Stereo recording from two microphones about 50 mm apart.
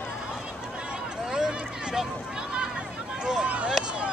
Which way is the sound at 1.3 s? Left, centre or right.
Centre.